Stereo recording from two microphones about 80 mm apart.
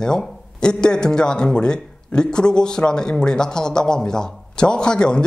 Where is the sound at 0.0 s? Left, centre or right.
Centre.